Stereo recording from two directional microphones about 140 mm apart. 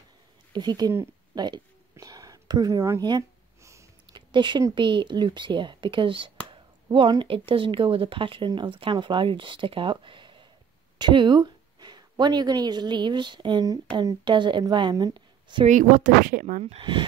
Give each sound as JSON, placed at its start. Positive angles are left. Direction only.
{"t": 0.5, "sound": "speech", "side_deg": -30}
{"t": 1.3, "sound": "a sound", "side_deg": -30}
{"t": 4.3, "sound": "speech", "side_deg": -35}
{"t": 15.6, "sound": "speech", "side_deg": -65}
{"t": 16.6, "sound": "speech", "side_deg": -40}